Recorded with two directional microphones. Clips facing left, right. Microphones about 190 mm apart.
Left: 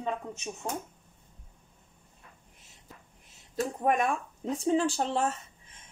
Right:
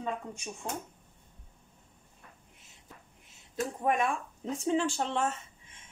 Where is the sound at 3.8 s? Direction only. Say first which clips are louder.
Left 2 dB; 40° left (ahead or behind).